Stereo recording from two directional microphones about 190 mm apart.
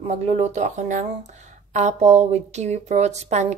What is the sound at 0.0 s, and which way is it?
A woman's voice, 35° right (ahead or behind).